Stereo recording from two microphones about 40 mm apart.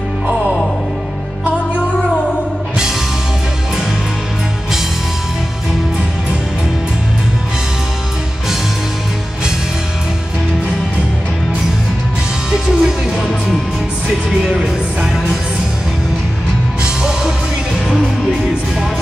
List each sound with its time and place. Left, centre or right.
12.4 s music: centre
14.4 s music: right